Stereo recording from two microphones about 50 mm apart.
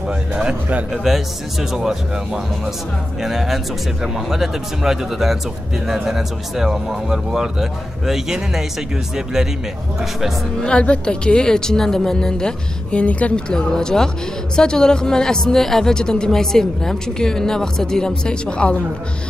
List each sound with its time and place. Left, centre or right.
0.3 s a man's voice: centre
0.9 s speech: centre
10.6 s speech: left
13.0 s speech: left
13.6 s speech: centre